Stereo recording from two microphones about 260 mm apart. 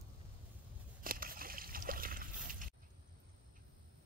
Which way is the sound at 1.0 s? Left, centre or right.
Right.